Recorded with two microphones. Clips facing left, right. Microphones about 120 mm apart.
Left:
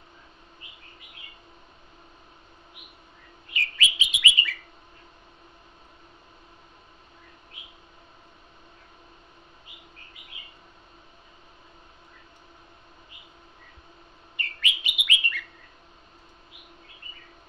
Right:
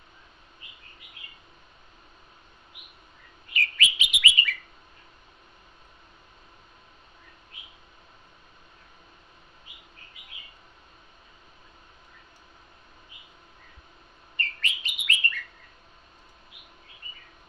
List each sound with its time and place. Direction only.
3.5 s chirp: 30° left (ahead or behind)
14.3 s bird: 15° left (ahead or behind)